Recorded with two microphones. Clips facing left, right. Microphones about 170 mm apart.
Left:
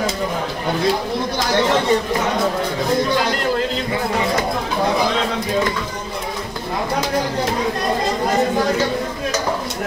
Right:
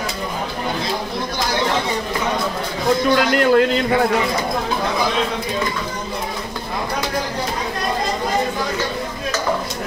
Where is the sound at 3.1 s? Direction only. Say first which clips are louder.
Right 5 dB; 65° right (ahead or behind).